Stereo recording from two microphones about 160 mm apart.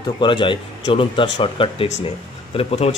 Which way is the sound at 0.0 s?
30° left (ahead or behind).